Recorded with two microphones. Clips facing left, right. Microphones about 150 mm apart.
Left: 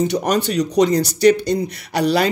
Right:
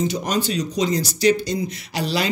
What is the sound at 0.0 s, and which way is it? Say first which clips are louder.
Speech: left 4 dB; 65° left (ahead or behind).